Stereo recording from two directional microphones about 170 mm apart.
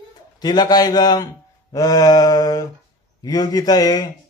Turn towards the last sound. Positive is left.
turn(degrees=20)  # may be behind; listen again after turning